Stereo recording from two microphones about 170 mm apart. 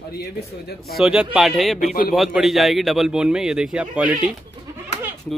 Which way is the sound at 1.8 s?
50° left (ahead or behind).